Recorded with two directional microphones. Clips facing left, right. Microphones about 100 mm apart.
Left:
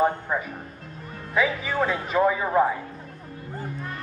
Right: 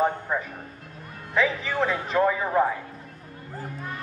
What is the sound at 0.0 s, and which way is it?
Speech, 5° left (ahead or behind).